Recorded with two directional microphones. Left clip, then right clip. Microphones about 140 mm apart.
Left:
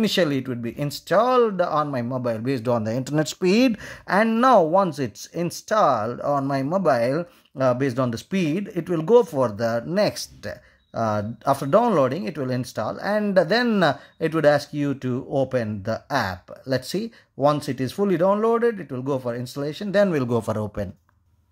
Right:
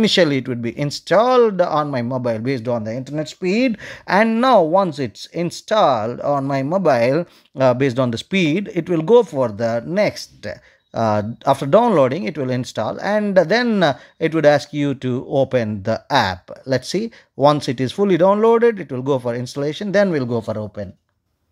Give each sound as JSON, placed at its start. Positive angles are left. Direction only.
{"t": 0.0, "sound": "speech", "side_deg": -25}
{"t": 2.6, "sound": "speech", "side_deg": 5}
{"t": 3.7, "sound": "speech", "side_deg": -15}
{"t": 11.0, "sound": "speech", "side_deg": -25}
{"t": 20.1, "sound": "speech", "side_deg": -5}